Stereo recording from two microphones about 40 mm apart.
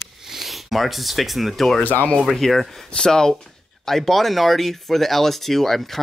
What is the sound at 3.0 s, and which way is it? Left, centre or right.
Speech, centre.